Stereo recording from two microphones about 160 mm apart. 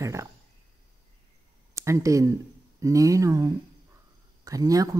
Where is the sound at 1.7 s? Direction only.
20° right (ahead or behind).